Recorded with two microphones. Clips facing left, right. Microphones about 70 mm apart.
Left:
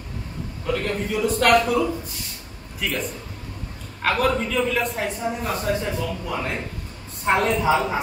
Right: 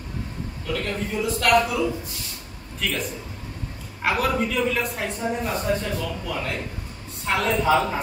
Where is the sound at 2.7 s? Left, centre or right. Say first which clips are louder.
Left 1 dB; centre.